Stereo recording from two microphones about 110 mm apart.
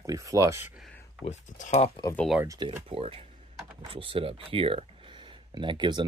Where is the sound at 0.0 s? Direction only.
30° right (ahead or behind).